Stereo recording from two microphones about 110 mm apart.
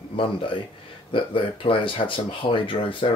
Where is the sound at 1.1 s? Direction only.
55° left (ahead or behind).